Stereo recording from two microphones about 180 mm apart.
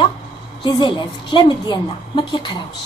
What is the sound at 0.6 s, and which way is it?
Speech, 25° left (ahead or behind).